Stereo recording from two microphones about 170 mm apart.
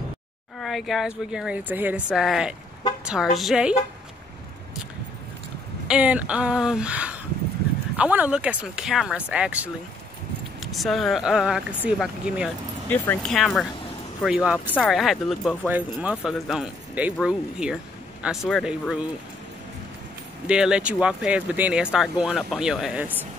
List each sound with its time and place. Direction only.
0.6 s speech: centre (ahead or behind)
5.9 s speech: 5° right (ahead or behind)
12.9 s speech: 10° left (ahead or behind)
20.4 s speech: 5° right (ahead or behind)